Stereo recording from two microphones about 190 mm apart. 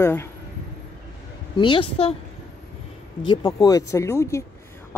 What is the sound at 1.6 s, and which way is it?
Speech, 25° left (ahead or behind).